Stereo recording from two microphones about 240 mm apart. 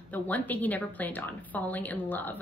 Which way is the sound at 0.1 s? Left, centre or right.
Centre.